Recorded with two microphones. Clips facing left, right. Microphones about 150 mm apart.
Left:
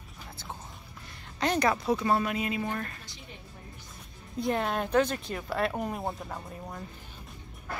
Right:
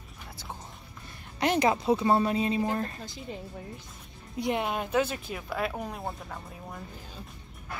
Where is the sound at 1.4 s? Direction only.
20° right (ahead or behind).